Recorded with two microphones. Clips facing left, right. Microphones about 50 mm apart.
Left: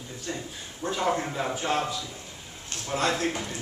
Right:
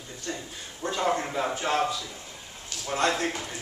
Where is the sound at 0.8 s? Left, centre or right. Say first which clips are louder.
Even; centre.